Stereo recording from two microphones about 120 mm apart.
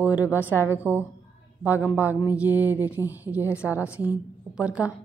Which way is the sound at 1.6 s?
15° right (ahead or behind).